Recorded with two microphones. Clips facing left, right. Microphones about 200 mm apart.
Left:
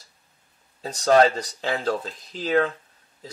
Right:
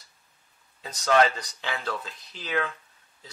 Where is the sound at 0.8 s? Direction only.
35° left (ahead or behind).